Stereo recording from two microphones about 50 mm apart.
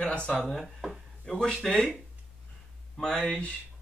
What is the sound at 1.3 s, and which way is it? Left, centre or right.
Speech, centre.